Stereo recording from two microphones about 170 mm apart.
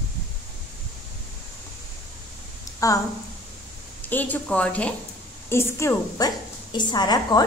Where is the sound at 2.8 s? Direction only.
20° left (ahead or behind).